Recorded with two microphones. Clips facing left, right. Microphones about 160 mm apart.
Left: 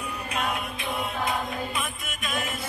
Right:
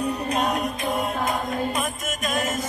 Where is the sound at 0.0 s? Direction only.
40° right (ahead or behind).